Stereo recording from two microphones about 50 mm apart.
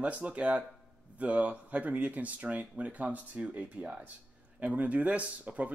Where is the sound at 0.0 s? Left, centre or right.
Right.